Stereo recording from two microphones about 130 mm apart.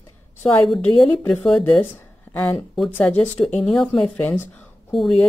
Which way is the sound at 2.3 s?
20° left (ahead or behind).